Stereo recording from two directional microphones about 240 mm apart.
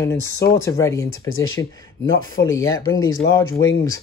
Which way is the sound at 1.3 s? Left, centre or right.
Left.